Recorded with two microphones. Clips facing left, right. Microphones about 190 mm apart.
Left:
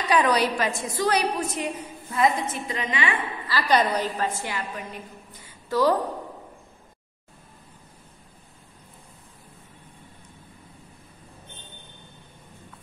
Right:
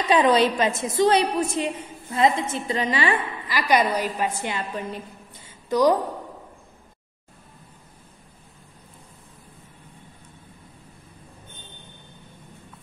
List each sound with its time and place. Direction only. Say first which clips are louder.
0.1 s a woman's voice: right 3 dB; 20° right (ahead or behind)
3.4 s a woman's voice: right 1 dB; 15° right (ahead or behind)